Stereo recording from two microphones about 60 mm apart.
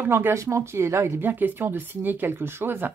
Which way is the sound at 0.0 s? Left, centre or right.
Right.